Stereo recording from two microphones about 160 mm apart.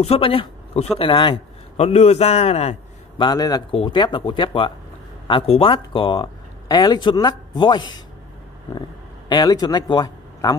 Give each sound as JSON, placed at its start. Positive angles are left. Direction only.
{"t": 0.0, "sound": "a man's voice", "side_deg": 35}
{"t": 3.2, "sound": "a woman's voice", "side_deg": 25}
{"t": 9.3, "sound": "speech", "side_deg": 25}